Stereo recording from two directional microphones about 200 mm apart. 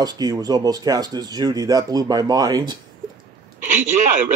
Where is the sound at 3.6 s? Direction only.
40° right (ahead or behind).